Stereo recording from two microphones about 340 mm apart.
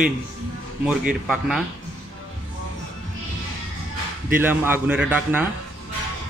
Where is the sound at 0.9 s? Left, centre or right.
Centre.